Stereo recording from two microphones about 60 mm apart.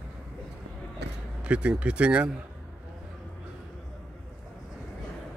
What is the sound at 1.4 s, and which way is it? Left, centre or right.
Speech, centre.